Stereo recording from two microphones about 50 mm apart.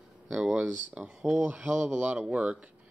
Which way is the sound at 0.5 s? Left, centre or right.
Right.